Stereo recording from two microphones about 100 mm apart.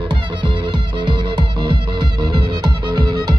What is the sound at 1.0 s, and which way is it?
Music, 50° right (ahead or behind).